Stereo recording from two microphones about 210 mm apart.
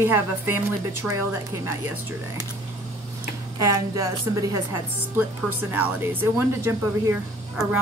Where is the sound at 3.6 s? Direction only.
15° right (ahead or behind).